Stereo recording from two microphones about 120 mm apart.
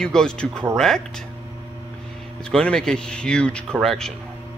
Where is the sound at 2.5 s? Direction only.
5° left (ahead or behind).